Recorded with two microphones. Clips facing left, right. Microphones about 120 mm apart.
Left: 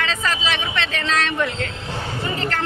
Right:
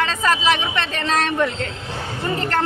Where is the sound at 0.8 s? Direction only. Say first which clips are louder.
Right 1 dB; 40° right (ahead or behind).